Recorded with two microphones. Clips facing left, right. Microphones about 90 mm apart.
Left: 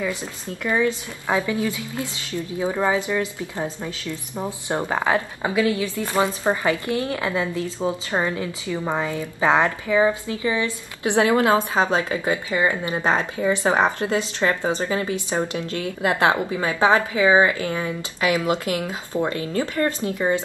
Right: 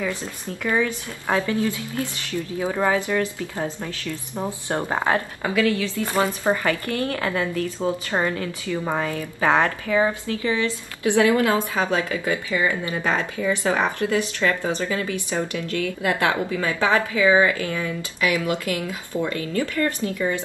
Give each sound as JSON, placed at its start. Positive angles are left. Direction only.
{"t": 0.1, "sound": "a woman's voice", "side_deg": 15}